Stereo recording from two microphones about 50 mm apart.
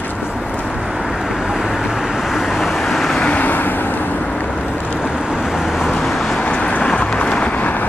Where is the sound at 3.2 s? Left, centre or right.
Left.